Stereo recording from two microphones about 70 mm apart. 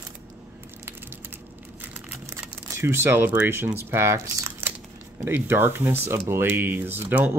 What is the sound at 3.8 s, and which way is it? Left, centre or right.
Speech, right.